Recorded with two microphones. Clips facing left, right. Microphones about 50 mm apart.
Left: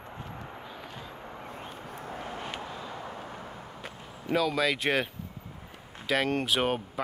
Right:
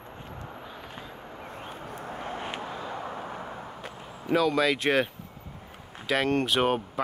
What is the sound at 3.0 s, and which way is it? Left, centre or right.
Vehicle, right.